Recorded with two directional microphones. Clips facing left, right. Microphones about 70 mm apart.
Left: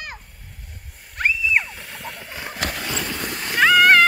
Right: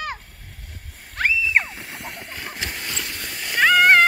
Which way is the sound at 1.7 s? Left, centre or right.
Right.